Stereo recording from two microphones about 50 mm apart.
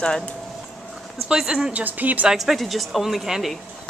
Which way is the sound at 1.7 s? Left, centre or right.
Right.